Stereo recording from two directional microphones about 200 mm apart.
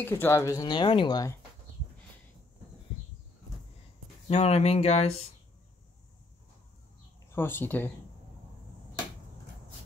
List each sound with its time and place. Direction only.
0.0 s speech: 10° left (ahead or behind)
4.3 s speech: 30° left (ahead or behind)
7.2 s speech: 10° left (ahead or behind)